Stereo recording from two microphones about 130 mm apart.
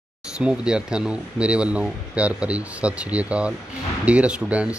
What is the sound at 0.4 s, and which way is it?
Speech, 5° right (ahead or behind).